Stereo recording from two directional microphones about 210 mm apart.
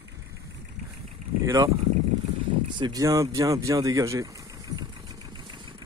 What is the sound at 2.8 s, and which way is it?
Speech, 20° right (ahead or behind).